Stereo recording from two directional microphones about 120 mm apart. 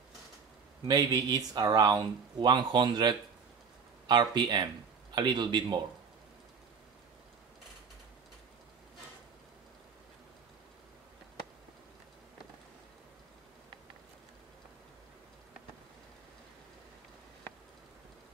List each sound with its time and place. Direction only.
0.8 s speech: 30° right (ahead or behind)